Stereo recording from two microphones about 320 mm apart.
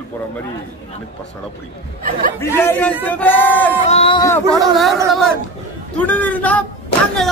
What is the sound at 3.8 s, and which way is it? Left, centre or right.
Speech, centre.